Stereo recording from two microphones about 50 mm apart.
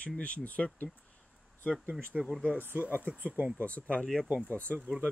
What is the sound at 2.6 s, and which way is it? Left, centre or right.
Speech, right.